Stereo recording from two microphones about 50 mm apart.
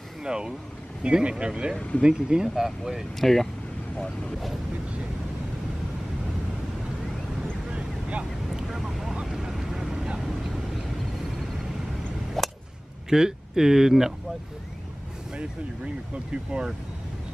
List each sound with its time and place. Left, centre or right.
0.2 s speech: centre
3.2 s speech: centre
7.7 s vehicle: centre
8.6 s vehicle: centre
12.4 s a sound: centre
13.1 s speech: centre